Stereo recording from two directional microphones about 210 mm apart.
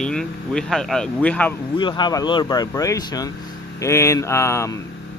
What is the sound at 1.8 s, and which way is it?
Speech, 20° left (ahead or behind).